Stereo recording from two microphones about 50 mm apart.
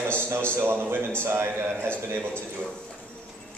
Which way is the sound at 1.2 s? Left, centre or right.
Right.